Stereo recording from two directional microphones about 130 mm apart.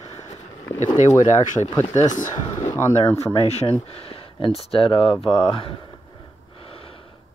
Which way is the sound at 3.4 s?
55° left (ahead or behind).